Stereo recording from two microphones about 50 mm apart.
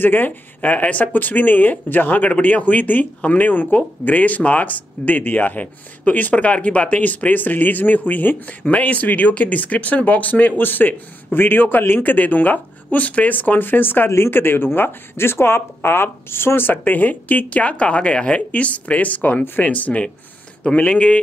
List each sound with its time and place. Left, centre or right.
0.0 s speech: left